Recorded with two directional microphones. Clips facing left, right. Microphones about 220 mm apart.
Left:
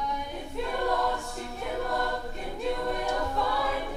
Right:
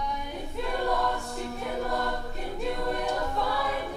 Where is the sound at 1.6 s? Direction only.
Centre (ahead or behind).